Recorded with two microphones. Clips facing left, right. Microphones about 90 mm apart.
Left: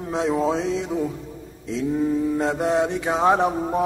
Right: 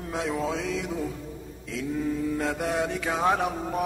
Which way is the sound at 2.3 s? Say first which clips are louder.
Left 6 dB; 25° left (ahead or behind).